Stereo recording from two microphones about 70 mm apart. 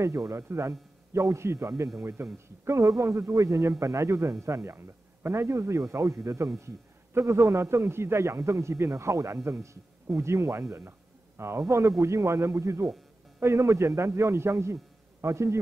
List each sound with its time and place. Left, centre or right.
0.0 s a man's voice: right